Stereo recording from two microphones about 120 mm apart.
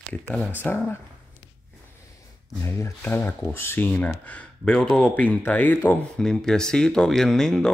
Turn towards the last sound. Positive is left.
turn(degrees=5)  # may be behind; listen again after turning